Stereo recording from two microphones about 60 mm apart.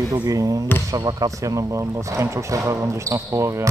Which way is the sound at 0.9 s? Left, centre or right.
Right.